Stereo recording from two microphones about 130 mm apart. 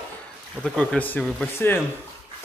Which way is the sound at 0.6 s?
5° left (ahead or behind).